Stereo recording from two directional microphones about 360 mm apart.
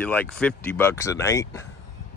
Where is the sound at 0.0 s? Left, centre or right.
Centre.